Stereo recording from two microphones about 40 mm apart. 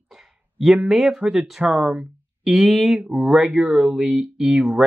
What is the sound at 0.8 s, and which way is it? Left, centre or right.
Speech, centre.